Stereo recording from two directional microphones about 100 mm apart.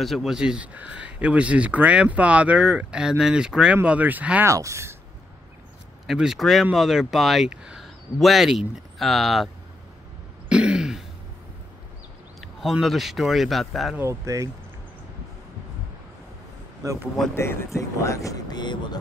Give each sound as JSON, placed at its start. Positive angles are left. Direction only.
{"t": 0.0, "sound": "speech", "side_deg": 0}
{"t": 4.5, "sound": "speech", "side_deg": -30}
{"t": 6.0, "sound": "speech", "side_deg": -5}
{"t": 10.5, "sound": "throat clearing", "side_deg": -10}
{"t": 12.4, "sound": "a sound", "side_deg": 0}
{"t": 12.8, "sound": "speech", "side_deg": 0}
{"t": 13.9, "sound": "speech", "side_deg": -30}
{"t": 16.8, "sound": "speech", "side_deg": -30}
{"t": 17.4, "sound": "speech", "side_deg": 25}